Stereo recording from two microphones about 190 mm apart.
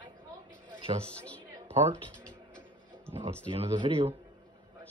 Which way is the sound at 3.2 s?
25° right (ahead or behind).